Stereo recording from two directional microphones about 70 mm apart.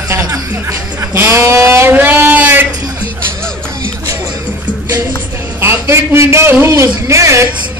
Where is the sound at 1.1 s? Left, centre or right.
Right.